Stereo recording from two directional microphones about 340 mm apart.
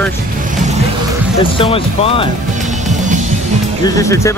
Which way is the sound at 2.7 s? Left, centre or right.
Right.